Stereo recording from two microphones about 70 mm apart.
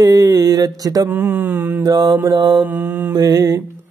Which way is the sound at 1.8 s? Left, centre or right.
Right.